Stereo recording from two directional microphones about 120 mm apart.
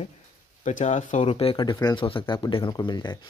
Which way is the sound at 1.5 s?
40° left (ahead or behind).